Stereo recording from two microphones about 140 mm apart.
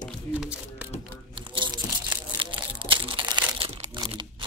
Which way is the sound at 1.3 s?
35° right (ahead or behind).